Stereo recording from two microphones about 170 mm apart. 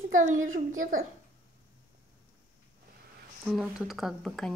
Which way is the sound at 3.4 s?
5° right (ahead or behind).